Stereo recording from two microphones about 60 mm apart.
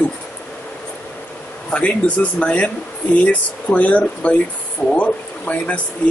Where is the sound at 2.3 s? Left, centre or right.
Left.